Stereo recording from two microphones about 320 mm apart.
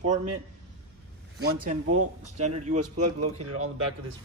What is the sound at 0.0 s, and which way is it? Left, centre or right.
Speech, right.